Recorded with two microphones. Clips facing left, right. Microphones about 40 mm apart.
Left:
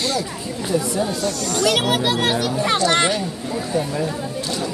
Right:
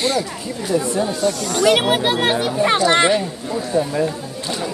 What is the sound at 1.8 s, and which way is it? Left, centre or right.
Speech, right.